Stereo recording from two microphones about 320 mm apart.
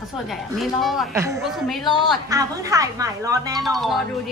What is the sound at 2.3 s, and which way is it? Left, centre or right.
A woman's voice, centre.